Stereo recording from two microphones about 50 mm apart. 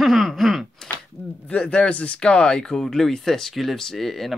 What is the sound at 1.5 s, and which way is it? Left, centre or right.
Speech, centre.